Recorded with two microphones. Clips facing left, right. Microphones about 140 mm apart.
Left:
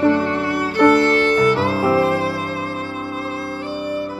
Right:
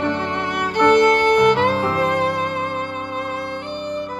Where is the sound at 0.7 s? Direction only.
20° right (ahead or behind).